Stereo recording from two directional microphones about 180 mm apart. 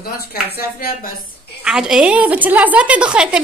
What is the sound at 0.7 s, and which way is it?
Speech, 55° left (ahead or behind).